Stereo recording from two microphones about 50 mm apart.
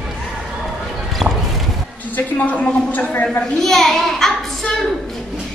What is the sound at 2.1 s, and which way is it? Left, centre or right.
Speech, left.